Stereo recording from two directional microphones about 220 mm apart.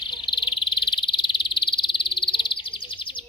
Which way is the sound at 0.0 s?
20° left (ahead or behind).